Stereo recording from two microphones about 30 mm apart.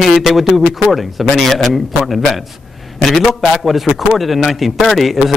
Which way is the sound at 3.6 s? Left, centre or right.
Centre.